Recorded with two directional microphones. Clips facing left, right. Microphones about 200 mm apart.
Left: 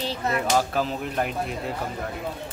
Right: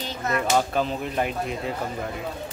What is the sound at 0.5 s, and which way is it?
Speech, centre (ahead or behind).